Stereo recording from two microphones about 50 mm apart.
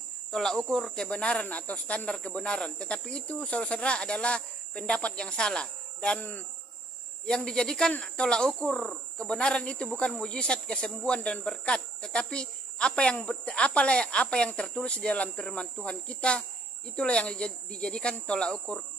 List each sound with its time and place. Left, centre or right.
0.3 s speech: centre
6.1 s speech: left
7.2 s speech: centre